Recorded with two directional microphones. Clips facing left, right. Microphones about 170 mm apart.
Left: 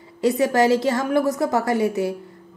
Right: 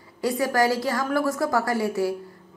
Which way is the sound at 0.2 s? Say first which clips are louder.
Left 4 dB; 20° left (ahead or behind).